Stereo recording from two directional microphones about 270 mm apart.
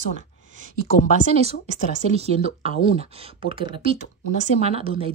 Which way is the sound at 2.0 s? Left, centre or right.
Right.